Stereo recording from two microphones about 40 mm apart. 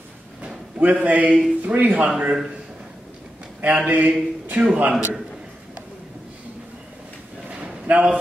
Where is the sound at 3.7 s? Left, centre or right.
Right.